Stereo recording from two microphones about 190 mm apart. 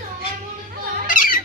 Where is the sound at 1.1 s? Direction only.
45° left (ahead or behind).